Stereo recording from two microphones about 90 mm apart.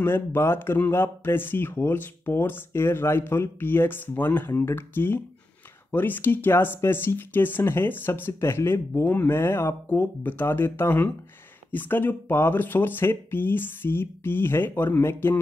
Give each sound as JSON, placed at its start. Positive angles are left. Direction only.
{"t": 0.0, "sound": "speech", "side_deg": 25}